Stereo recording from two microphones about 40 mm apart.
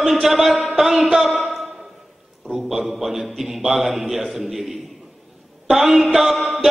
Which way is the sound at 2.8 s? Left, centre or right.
Centre.